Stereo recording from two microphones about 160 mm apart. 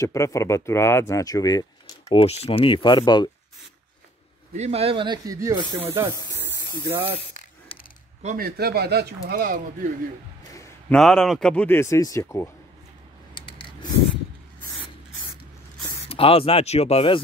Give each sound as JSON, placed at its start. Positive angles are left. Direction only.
{"t": 0.0, "sound": "speech", "side_deg": 20}
{"t": 2.1, "sound": "speech", "side_deg": 40}
{"t": 4.6, "sound": "speech", "side_deg": -40}
{"t": 8.4, "sound": "speech", "side_deg": -75}
{"t": 10.9, "sound": "speech", "side_deg": 5}
{"t": 13.3, "sound": "scissors", "side_deg": 35}
{"t": 16.1, "sound": "speech", "side_deg": 35}